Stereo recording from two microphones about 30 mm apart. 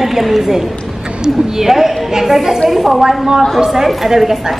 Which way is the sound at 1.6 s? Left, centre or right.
Centre.